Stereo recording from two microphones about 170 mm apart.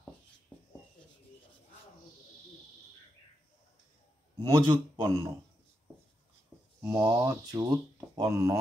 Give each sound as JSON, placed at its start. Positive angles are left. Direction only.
{"t": 4.4, "sound": "a man's voice", "side_deg": -20}
{"t": 6.8, "sound": "speech", "side_deg": -15}